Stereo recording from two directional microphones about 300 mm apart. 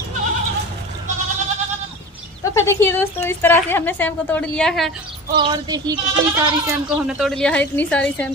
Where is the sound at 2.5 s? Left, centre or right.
Centre.